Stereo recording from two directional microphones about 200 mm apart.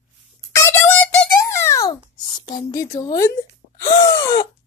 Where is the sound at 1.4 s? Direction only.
15° left (ahead or behind).